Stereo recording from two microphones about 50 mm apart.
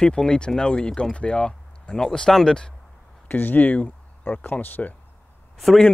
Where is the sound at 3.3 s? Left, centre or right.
Left.